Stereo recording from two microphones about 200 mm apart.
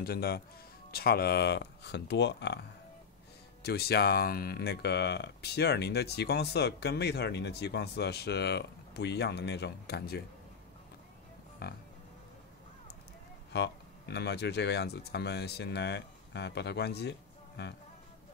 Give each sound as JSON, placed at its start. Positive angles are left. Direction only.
{"t": 0.0, "sound": "speech", "side_deg": 50}
{"t": 3.6, "sound": "speech", "side_deg": 55}
{"t": 11.6, "sound": "speech", "side_deg": 50}
{"t": 13.5, "sound": "speech", "side_deg": 60}